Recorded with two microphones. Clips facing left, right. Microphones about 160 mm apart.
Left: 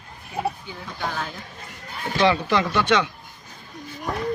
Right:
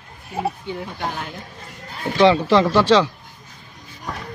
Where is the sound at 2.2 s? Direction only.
25° right (ahead or behind).